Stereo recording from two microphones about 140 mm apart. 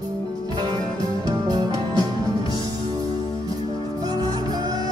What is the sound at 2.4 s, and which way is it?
Music, 35° left (ahead or behind).